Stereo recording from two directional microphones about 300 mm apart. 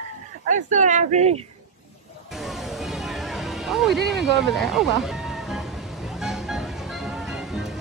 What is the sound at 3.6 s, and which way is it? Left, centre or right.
Speech, centre.